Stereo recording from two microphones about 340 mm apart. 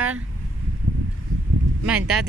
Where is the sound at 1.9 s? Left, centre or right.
Centre.